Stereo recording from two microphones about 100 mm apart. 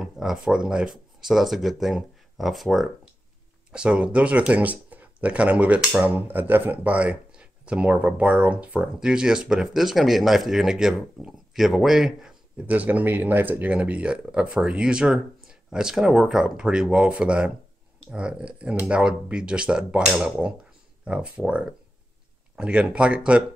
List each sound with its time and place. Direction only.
0.0 s speech: 5° right (ahead or behind)